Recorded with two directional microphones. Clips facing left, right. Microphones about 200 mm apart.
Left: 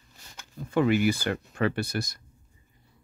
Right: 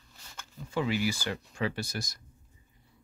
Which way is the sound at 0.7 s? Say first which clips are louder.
Left 7 dB; 55° left (ahead or behind).